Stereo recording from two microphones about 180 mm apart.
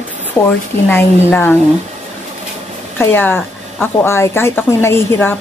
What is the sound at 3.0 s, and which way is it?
Speech, 10° left (ahead or behind).